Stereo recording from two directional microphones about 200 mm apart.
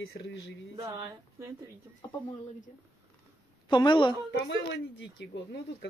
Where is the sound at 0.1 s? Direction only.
60° left (ahead or behind).